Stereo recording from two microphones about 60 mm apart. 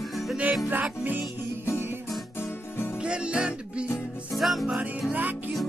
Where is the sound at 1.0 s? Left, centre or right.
Right.